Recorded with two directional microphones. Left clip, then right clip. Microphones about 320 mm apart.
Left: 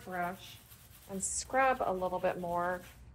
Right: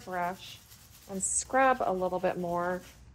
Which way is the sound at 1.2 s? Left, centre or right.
Right.